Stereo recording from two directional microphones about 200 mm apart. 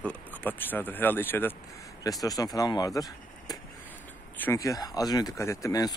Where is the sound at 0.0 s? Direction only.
5° left (ahead or behind).